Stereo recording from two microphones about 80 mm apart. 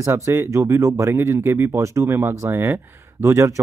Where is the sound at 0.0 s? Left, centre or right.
Right.